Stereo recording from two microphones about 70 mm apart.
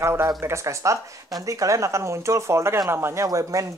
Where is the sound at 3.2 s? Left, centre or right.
Right.